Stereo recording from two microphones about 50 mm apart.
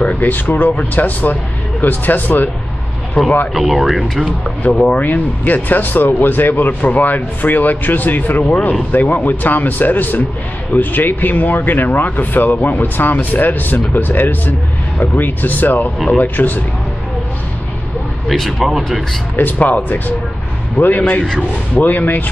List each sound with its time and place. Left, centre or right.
0.0 s speech: left
3.2 s speech: left
3.5 s speech: centre
4.7 s speech: left
18.3 s speech: centre
19.3 s speech: left